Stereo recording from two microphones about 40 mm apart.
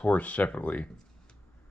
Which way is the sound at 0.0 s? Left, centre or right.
Left.